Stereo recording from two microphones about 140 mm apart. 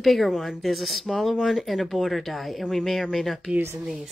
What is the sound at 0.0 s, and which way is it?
Speech, centre (ahead or behind).